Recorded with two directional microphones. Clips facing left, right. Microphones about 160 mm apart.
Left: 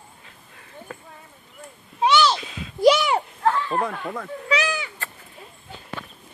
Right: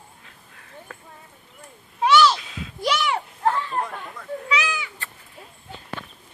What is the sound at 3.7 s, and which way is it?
Speech, 65° left (ahead or behind).